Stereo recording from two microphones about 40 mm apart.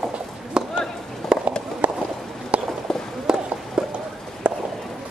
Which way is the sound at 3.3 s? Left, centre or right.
Centre.